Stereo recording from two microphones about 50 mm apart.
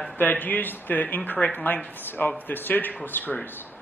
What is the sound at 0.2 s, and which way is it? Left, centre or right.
Speech, left.